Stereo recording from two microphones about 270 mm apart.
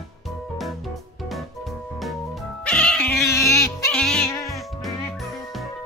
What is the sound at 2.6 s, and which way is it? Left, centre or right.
Cat, centre.